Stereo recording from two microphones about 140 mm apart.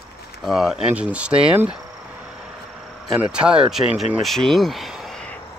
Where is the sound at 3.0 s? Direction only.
5° right (ahead or behind).